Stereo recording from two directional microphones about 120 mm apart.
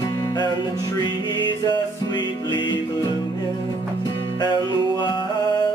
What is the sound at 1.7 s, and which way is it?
Music, 40° left (ahead or behind).